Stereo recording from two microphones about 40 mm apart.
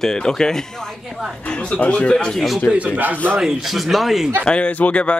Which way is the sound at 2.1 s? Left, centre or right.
Centre.